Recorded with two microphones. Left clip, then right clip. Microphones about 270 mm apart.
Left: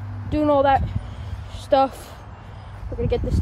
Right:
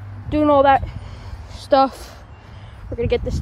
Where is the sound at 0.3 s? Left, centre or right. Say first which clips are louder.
Right 4 dB; right.